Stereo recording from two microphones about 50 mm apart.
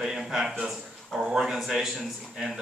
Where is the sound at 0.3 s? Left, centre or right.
Centre.